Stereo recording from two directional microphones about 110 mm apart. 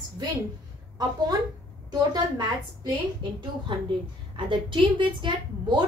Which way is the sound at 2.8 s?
50° right (ahead or behind).